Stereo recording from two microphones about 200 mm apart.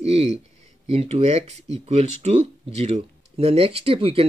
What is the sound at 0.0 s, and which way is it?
Speech, 30° right (ahead or behind).